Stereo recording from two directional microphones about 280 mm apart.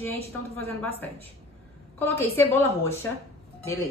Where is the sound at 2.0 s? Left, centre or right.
Centre.